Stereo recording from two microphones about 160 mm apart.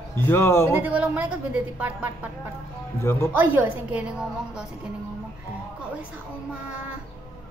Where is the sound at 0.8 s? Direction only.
10° right (ahead or behind).